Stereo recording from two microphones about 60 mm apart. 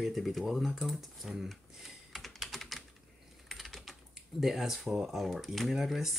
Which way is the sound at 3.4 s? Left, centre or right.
Centre.